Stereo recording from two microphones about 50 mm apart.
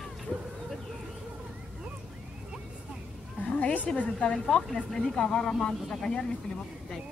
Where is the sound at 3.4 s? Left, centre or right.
Left.